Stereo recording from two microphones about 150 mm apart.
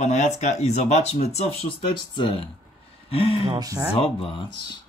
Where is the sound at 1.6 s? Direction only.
35° left (ahead or behind).